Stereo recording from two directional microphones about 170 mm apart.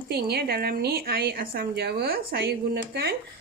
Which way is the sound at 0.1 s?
70° right (ahead or behind).